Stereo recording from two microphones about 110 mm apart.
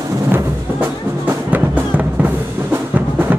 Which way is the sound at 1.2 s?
15° right (ahead or behind).